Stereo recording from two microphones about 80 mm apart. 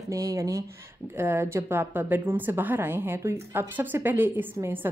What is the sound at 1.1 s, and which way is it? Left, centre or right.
A woman's voice, right.